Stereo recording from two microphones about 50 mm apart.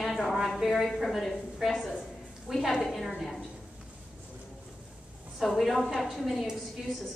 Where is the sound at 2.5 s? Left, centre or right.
Centre.